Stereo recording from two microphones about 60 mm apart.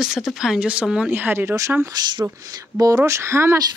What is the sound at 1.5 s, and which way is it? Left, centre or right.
Speech, right.